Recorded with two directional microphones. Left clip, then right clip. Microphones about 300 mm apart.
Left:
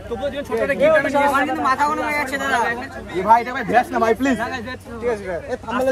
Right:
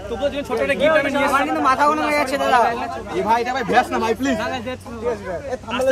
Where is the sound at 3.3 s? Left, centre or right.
Centre.